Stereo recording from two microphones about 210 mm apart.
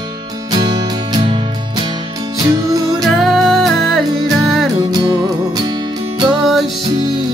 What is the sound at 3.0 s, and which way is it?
Music, centre (ahead or behind).